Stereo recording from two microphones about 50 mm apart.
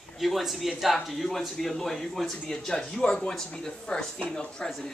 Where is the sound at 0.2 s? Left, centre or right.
Centre.